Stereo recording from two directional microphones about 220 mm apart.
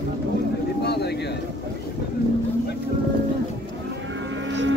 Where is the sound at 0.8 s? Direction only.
50° left (ahead or behind).